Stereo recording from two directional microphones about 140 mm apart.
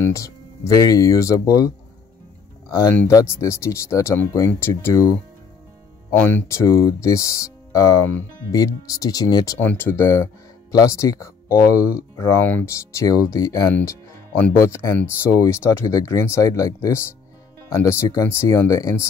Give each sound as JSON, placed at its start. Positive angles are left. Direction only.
{"t": 0.0, "sound": "speech", "side_deg": 20}
{"t": 3.1, "sound": "speech", "side_deg": 25}
{"t": 6.1, "sound": "speech", "side_deg": 15}
{"t": 9.6, "sound": "speech", "side_deg": 15}
{"t": 13.7, "sound": "music", "side_deg": 15}
{"t": 14.6, "sound": "speech", "side_deg": 20}